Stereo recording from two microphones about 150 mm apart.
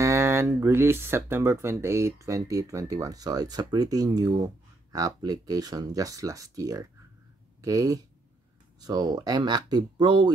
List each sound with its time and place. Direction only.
0.0 s speech: 20° right (ahead or behind)